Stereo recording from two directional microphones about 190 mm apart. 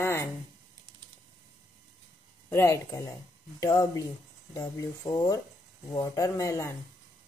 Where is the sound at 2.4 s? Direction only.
15° left (ahead or behind).